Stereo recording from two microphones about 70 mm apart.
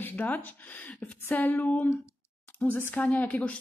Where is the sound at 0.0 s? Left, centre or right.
Left.